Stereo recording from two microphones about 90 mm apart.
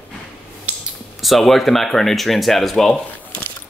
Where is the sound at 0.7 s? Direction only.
15° right (ahead or behind).